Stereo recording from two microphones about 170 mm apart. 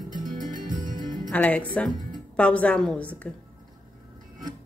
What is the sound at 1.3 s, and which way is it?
Speech, 10° left (ahead or behind).